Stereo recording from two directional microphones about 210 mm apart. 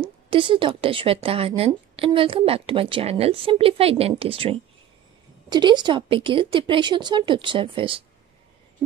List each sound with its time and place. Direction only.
0.0 s a woman's voice: 25° right (ahead or behind)